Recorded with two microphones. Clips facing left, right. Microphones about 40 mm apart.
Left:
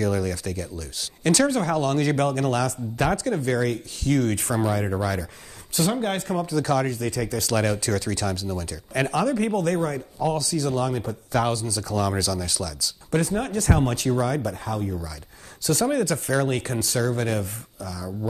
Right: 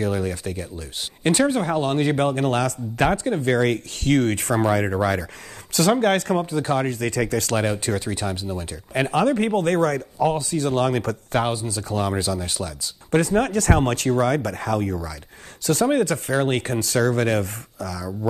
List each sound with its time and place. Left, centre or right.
0.0 s speech: right
3.5 s speech: right
5.7 s speech: right
6.3 s speech: right
6.9 s speech: right
7.5 s speech: right
9.2 s speech: right
10.5 s speech: right
11.3 s speech: right
13.2 s speech: right
15.6 s speech: right